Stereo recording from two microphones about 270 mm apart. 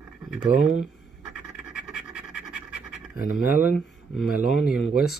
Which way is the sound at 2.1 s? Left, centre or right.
Centre.